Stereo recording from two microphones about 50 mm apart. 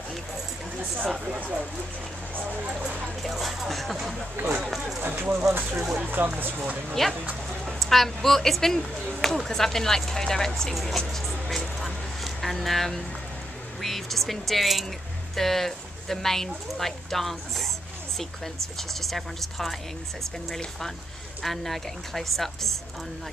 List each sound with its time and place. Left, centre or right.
3.3 s a woman's voice: centre
5.0 s speech: right
5.8 s speech: centre
6.0 s speech: right
6.9 s a woman's voice: centre
11.8 s a sound: centre
13.7 s a woman's voice: centre